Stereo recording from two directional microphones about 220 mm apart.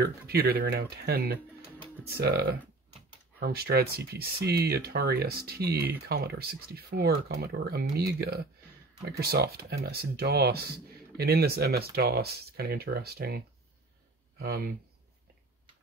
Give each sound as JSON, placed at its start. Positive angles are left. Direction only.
{"t": 0.0, "sound": "speech", "side_deg": -45}
{"t": 14.4, "sound": "speech", "side_deg": -45}